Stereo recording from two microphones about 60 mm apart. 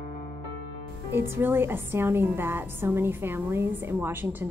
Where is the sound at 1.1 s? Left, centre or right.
Right.